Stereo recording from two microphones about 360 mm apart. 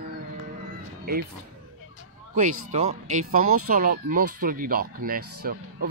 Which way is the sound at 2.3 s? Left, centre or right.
Right.